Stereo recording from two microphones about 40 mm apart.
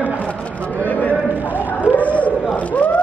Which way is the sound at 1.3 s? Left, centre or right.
Right.